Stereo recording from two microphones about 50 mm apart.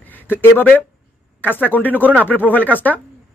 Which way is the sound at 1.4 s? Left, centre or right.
Left.